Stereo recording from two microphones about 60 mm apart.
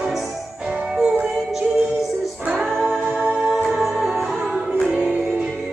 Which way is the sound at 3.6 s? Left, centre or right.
Centre.